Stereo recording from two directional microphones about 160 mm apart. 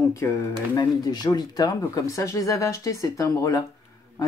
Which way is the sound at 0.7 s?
25° left (ahead or behind).